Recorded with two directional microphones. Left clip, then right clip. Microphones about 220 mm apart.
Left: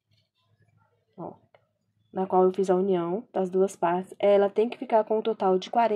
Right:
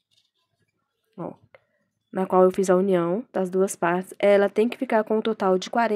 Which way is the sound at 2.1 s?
35° right (ahead or behind).